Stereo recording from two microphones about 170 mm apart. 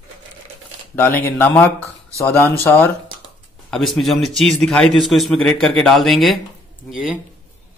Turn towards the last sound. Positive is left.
turn(degrees=-5)  # may be behind; listen again after turning